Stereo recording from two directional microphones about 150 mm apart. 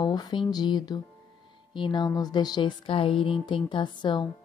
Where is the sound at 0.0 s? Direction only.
30° left (ahead or behind).